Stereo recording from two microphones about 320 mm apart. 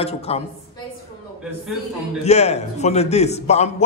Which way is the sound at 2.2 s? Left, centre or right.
Centre.